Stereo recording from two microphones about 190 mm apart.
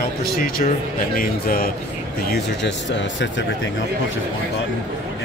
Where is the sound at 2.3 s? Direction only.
70° left (ahead or behind).